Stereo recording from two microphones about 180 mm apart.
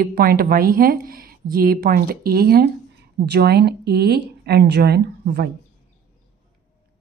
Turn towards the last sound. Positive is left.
turn(degrees=-65)  # may be behind; listen again after turning